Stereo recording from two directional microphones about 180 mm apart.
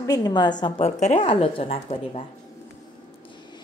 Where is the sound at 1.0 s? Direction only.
35° left (ahead or behind).